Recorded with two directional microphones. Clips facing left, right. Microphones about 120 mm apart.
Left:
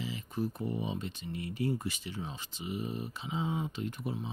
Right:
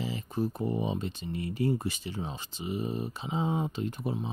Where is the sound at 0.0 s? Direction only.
35° right (ahead or behind).